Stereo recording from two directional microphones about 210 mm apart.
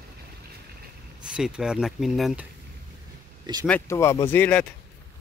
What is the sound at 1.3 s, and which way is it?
Speech, 5° right (ahead or behind).